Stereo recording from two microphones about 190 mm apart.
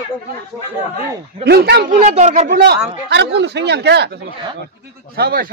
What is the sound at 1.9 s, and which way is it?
Speech, 40° right (ahead or behind).